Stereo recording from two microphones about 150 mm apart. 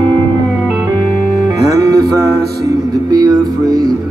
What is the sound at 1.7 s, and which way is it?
Music, 25° right (ahead or behind).